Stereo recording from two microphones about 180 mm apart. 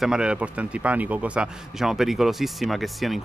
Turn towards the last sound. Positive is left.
turn(degrees=0)  # may be behind; listen again after turning